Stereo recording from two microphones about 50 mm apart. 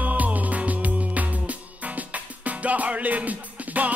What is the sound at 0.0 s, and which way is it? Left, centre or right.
Music, right.